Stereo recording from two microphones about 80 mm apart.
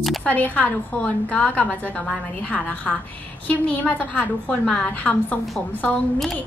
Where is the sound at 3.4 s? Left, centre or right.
Left.